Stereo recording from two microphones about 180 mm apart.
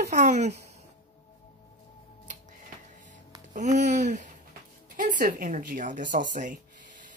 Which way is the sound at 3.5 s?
40° right (ahead or behind).